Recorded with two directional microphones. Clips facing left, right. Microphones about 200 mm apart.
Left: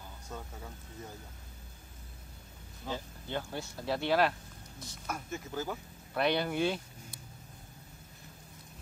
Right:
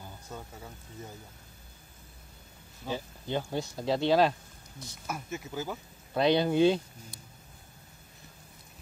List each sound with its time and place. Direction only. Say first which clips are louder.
0.3 s speech: right 1 dB; 5° right (ahead or behind)
2.9 s speech: right 4 dB; 15° right (ahead or behind)
5.0 s speech: right 2 dB; 5° right (ahead or behind)
6.1 s speech: right 6 dB; 25° right (ahead or behind)